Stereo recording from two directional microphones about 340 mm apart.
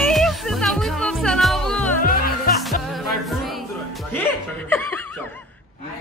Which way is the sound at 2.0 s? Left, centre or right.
Left.